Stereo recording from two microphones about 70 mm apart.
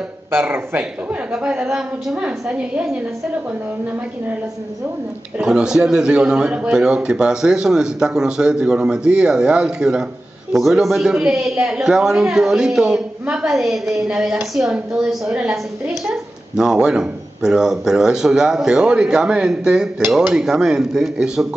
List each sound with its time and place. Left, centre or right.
0.3 s speech: right
1.3 s a man's voice: centre
5.4 s a man's voice: centre
16.5 s a man's voice: centre